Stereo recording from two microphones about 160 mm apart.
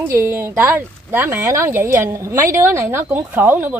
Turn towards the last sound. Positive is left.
turn(degrees=-15)  # may be behind; listen again after turning